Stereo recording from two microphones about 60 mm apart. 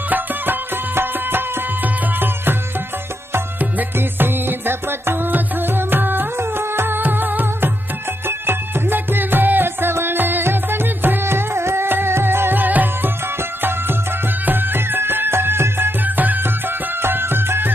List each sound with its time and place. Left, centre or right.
0.1 s music: right
4.2 s music: right
17.0 s music: right